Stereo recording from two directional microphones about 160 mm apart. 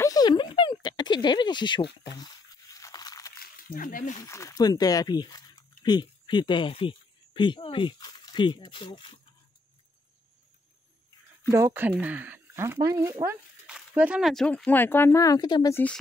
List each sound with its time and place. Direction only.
0.0 s a sound: 25° left (ahead or behind)
2.0 s crunch: 20° left (ahead or behind)
3.7 s speech: 55° left (ahead or behind)
4.2 s speech: 20° left (ahead or behind)
11.5 s speech: 15° right (ahead or behind); by 15.7 s 25° left (ahead or behind)
15.7 s speech: 10° left (ahead or behind)